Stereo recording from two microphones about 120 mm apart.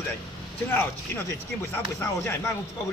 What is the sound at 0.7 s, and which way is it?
A man's voice, 20° left (ahead or behind).